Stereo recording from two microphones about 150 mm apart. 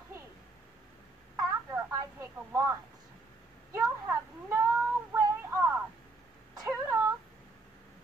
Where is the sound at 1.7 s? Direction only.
15° right (ahead or behind).